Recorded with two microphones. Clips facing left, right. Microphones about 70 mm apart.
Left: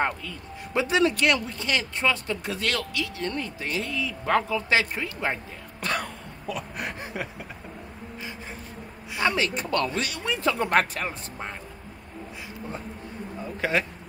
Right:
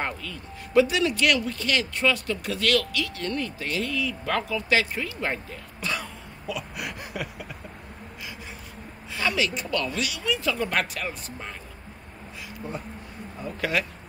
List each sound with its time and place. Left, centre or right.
0.0 s speech: left
5.8 s throat clearing: left
9.1 s speech: left
13.6 s speech: left